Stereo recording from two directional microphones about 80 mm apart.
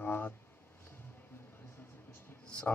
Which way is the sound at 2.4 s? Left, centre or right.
Centre.